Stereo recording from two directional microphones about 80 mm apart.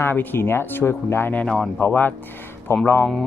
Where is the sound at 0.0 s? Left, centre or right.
Left.